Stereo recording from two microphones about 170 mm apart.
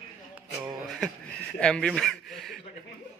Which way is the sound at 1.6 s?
5° left (ahead or behind).